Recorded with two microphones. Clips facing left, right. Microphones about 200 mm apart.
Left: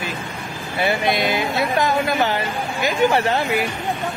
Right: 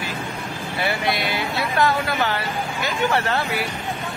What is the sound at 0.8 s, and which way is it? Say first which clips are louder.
Speech: left 5 dB; 20° left (ahead or behind).